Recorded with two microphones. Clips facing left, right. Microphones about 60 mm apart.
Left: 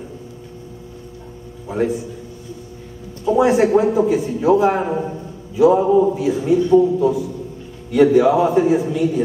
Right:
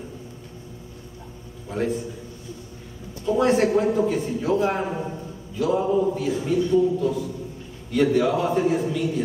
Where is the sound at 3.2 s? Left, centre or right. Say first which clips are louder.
Left 5 dB; centre.